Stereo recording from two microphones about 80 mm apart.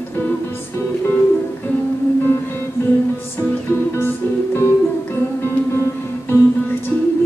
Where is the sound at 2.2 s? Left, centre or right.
Left.